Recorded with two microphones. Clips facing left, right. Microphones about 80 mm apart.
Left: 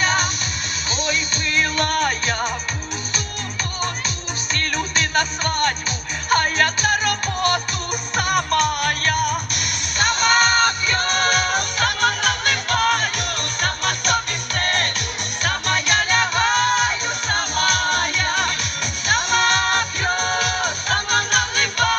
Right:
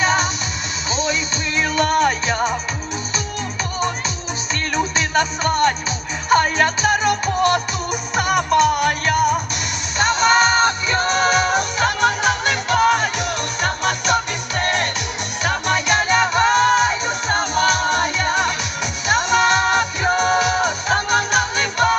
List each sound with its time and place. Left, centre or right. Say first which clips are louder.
0.0 s music: right 2 dB; centre
1.6 s music: right 4 dB; centre
4.9 s music: right 2 dB; centre
6.8 s music: right 3 dB; centre